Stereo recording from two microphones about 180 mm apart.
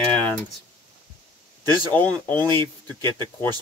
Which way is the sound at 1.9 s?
10° left (ahead or behind).